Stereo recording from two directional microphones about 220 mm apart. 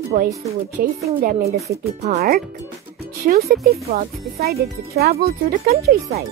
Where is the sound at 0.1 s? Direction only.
40° right (ahead or behind).